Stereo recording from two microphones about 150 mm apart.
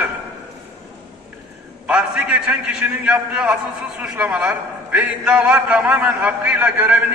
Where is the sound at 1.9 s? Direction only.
5° right (ahead or behind).